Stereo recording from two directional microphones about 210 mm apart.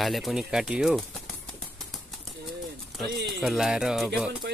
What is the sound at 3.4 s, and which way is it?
Speech, centre (ahead or behind).